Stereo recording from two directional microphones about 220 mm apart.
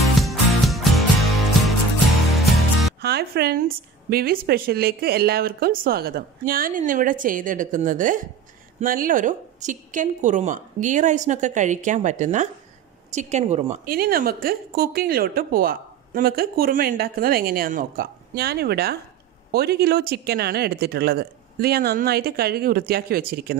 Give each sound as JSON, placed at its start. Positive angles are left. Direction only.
{"t": 0.0, "sound": "music", "side_deg": 0}
{"t": 2.1, "sound": "music", "side_deg": 0}
{"t": 3.0, "sound": "a woman's voice", "side_deg": -50}